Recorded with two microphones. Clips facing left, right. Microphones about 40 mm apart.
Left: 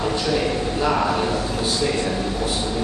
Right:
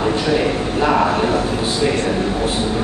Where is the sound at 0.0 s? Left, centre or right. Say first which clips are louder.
Right 4 dB; right.